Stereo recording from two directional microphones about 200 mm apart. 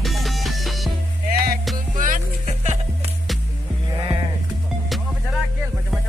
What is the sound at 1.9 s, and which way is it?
Music, 40° right (ahead or behind).